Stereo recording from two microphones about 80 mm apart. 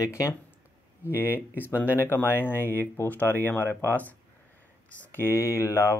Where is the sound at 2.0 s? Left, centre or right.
Left.